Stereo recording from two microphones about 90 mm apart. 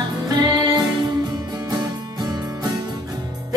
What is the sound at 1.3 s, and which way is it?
Music, 50° right (ahead or behind).